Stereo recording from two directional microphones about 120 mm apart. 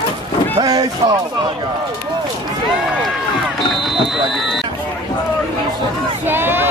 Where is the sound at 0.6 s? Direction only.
30° right (ahead or behind).